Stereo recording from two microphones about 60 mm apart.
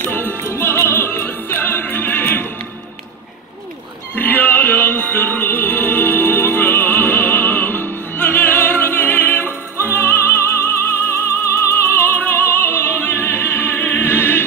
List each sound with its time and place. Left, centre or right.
0.0 s music: left
0.4 s music: left
4.1 s music: left
11.5 s opera: left